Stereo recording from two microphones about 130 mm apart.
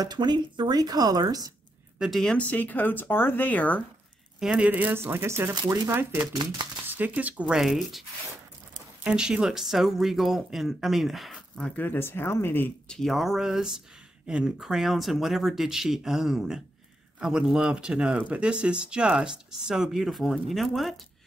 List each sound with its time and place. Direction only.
0.0 s speech: 35° right (ahead or behind)
2.0 s speech: centre (ahead or behind)
4.4 s speech: 5° right (ahead or behind)
9.0 s speech: 5° right (ahead or behind)